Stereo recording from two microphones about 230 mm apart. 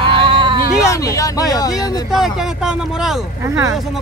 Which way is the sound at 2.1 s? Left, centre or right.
Centre.